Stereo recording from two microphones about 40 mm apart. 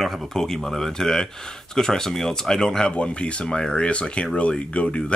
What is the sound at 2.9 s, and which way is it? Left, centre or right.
Speech, left.